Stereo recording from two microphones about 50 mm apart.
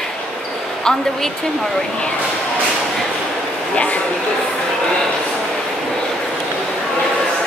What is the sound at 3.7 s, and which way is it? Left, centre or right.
Speech, left.